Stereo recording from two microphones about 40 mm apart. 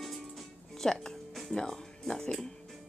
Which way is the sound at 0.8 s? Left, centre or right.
Centre.